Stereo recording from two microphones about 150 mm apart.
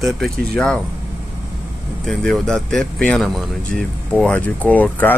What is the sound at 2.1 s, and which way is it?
Speech, 5° left (ahead or behind).